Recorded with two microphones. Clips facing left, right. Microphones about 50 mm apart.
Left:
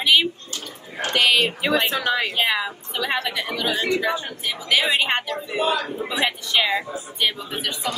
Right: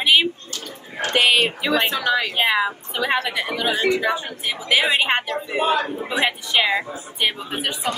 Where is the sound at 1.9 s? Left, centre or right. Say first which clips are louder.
Right 1 dB; left.